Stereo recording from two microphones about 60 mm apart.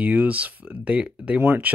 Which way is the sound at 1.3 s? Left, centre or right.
Right.